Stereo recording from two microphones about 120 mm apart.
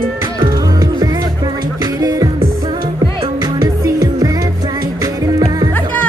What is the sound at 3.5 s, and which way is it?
Music, 35° right (ahead or behind).